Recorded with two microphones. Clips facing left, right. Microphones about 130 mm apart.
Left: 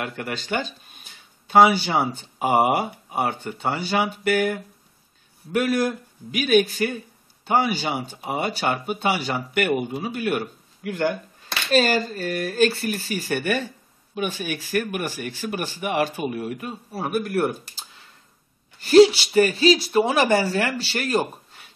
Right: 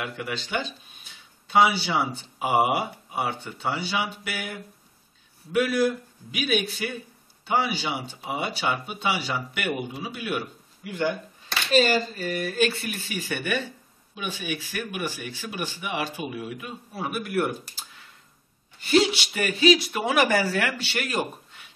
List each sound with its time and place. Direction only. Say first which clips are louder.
0.0 s speech: left 2 dB; 50° left (ahead or behind)
18.8 s speech: left 8 dB; 40° left (ahead or behind)